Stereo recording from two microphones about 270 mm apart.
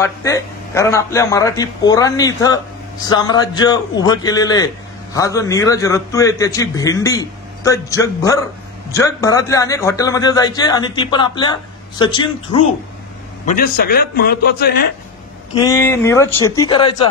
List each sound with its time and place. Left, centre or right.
0.0 s a man's voice: centre
13.5 s a man's voice: left
15.6 s a man's voice: centre